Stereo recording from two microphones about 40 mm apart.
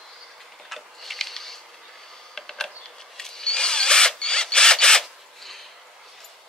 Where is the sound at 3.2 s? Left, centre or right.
Centre.